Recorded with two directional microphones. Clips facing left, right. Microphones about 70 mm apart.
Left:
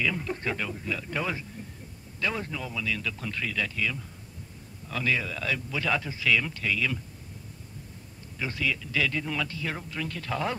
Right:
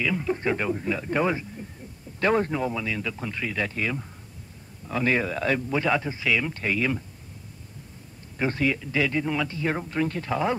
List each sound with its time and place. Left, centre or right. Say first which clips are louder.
0.0 s speech: right 4 dB; centre
0.4 s a man's voice: right 6 dB; right
2.1 s a man's voice: right 9 dB; right; by 3.5 s centre
3.5 s a man's voice: right 3 dB; right
5.0 s a man's voice: right 5 dB; right
5.9 s a man's voice: even; right
6.5 s a man's voice: right 3 dB; right
8.4 s a man's voice: right 6 dB; right; by 9.6 s centre
9.6 s a man's voice: right 8 dB; right